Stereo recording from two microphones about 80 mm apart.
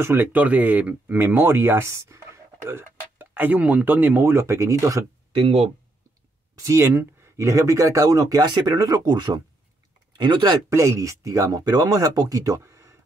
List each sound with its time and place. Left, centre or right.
0.0 s speech: right
6.6 s speech: right
10.7 s speech: right